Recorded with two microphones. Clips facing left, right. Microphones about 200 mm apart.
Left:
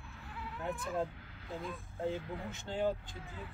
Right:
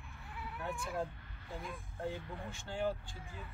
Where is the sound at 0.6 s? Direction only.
20° left (ahead or behind).